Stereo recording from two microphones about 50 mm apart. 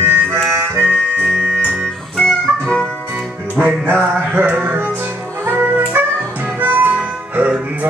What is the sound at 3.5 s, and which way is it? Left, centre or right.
Music, right.